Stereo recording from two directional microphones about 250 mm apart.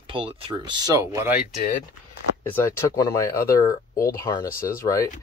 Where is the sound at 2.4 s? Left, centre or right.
Centre.